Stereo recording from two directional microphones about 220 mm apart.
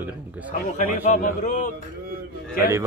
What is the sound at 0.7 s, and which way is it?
Speech, 35° left (ahead or behind).